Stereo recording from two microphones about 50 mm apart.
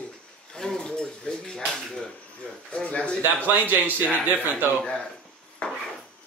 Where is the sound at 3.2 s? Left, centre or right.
Right.